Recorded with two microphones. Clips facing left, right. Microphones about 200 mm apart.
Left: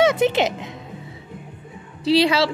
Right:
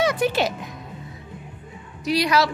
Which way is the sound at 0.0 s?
25° left (ahead or behind).